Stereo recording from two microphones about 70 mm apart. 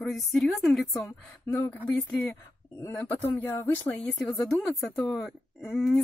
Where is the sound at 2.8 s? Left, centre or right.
Left.